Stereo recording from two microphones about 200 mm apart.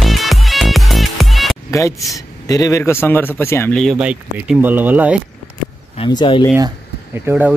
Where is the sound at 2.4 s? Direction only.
15° left (ahead or behind).